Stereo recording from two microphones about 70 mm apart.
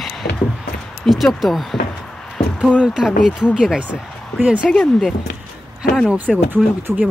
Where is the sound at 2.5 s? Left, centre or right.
Centre.